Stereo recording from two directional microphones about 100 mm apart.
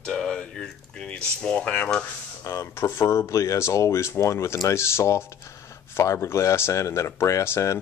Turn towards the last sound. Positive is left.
turn(degrees=30)  # may be behind; listen again after turning